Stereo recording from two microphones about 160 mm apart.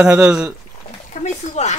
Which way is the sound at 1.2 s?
45° left (ahead or behind).